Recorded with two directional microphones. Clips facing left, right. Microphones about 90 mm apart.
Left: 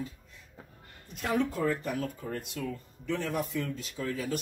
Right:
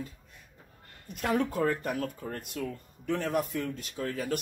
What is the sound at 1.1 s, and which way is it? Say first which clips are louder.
Speech: right 1 dB; 50° right (ahead or behind).